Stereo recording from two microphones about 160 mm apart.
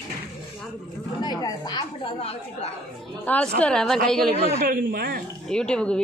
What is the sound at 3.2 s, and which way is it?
Speech, 10° left (ahead or behind).